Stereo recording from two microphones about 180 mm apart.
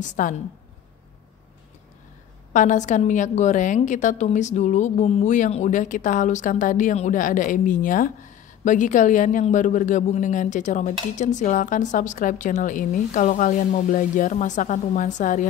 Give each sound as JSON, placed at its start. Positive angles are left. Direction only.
{"t": 0.0, "sound": "a woman's voice", "side_deg": 45}
{"t": 2.5, "sound": "a woman's voice", "side_deg": 45}